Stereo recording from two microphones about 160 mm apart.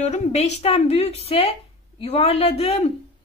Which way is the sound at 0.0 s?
45° left (ahead or behind).